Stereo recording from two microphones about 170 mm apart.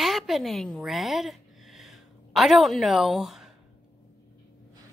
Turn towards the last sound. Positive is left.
turn(degrees=0)  # may be behind; listen again after turning